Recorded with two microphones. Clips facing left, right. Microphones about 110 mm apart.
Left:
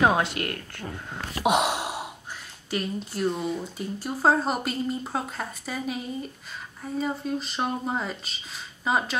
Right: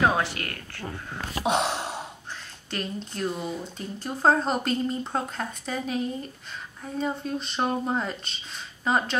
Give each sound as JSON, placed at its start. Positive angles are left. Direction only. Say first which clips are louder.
{"t": 0.0, "sound": "speech", "louder": "left 2 dB", "side_deg": 20}
{"t": 1.4, "sound": "speech", "louder": "left 2 dB", "side_deg": 10}